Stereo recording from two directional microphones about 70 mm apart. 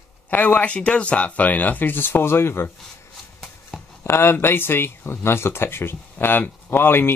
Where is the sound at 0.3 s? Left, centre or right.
Left.